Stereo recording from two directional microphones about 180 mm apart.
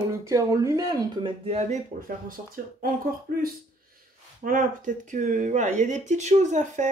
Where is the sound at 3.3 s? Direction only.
55° right (ahead or behind).